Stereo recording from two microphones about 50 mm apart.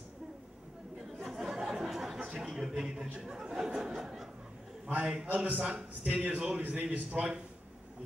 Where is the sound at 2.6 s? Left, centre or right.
Centre.